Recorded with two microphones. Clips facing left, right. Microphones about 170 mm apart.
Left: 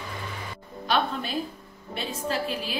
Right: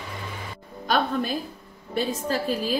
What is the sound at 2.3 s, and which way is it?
Speech, 40° right (ahead or behind).